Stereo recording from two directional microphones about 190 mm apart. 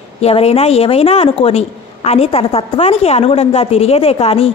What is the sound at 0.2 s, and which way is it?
Speech, 30° left (ahead or behind).